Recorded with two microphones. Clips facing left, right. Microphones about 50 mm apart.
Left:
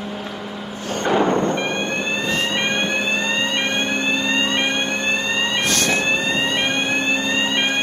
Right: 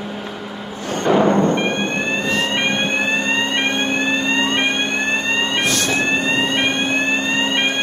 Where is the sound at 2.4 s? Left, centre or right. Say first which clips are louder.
Right 2 dB; right.